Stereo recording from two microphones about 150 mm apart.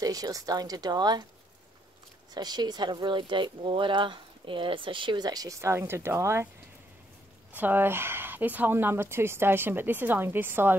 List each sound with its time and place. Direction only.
0.0 s speech: 25° right (ahead or behind)
2.3 s speech: 25° right (ahead or behind)
7.5 s speech: 15° right (ahead or behind)